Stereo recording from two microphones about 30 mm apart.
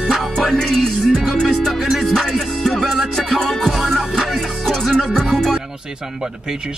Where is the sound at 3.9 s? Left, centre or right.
Centre.